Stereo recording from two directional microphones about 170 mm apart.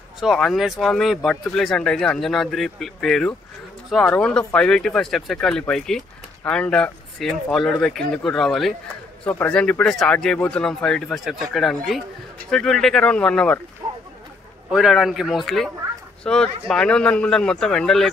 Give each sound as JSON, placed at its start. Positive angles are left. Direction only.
{"t": 0.2, "sound": "speech", "side_deg": 0}
{"t": 13.8, "sound": "a sound", "side_deg": -20}
{"t": 14.7, "sound": "speech", "side_deg": 0}